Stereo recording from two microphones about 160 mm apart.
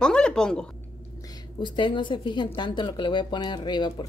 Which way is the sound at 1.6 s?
30° left (ahead or behind).